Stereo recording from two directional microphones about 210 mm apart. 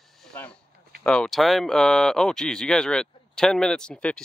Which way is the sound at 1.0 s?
5° left (ahead or behind).